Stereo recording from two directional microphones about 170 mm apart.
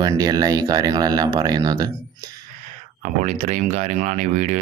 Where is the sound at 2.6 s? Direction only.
50° right (ahead or behind).